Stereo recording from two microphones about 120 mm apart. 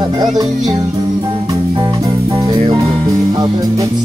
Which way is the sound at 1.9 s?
30° right (ahead or behind).